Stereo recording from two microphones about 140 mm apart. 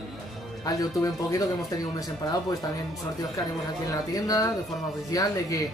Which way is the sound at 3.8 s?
25° left (ahead or behind).